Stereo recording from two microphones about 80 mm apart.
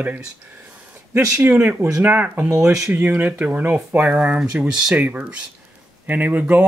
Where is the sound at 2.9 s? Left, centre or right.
Right; by 4.9 s centre.